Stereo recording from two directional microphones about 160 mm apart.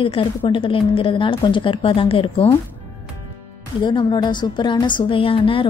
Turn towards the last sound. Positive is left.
turn(degrees=35)  # may be behind; listen again after turning